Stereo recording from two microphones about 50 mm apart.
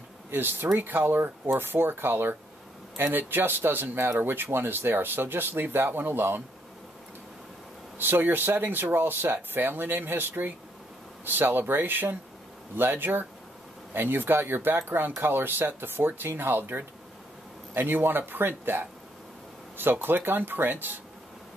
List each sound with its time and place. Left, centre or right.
0.3 s speech: right
8.0 s speech: right